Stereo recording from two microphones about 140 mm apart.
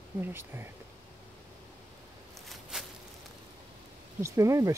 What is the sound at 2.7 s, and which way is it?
Walk, 5° right (ahead or behind).